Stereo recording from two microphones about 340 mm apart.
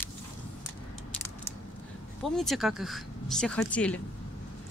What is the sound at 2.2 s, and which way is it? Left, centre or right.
Speech, centre.